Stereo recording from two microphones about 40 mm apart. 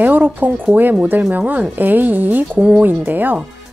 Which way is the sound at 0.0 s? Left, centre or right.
Right.